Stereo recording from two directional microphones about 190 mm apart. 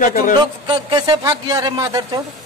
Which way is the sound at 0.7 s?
25° right (ahead or behind).